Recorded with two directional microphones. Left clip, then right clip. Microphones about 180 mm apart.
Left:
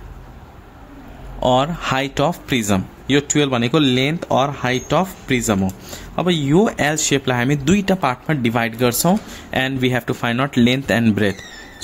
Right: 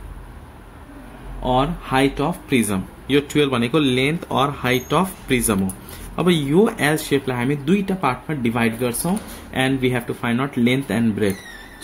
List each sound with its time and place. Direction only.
1.4 s speech: 45° left (ahead or behind)
2.7 s speech: 30° left (ahead or behind)